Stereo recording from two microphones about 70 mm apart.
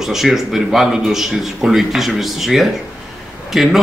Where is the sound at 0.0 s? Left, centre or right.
Centre.